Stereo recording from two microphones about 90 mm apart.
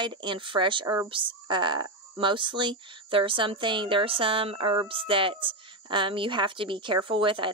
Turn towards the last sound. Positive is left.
turn(degrees=-70)  # may be behind; listen again after turning